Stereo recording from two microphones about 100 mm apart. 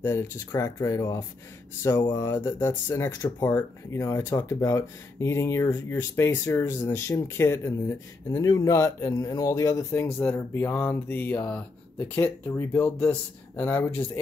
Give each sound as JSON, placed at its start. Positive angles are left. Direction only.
{"t": 0.0, "sound": "speech", "side_deg": 25}
{"t": 8.3, "sound": "speech", "side_deg": 35}